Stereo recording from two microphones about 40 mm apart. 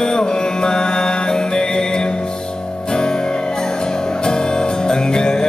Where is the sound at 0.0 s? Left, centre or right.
Centre.